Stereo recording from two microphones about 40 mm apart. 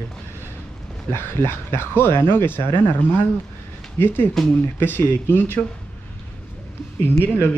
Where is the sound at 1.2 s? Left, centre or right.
Left.